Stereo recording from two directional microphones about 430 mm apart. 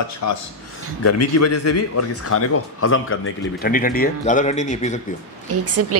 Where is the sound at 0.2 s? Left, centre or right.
Left; by 5.0 s centre.